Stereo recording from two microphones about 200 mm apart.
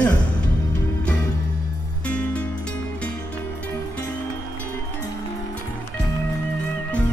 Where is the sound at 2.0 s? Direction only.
5° left (ahead or behind).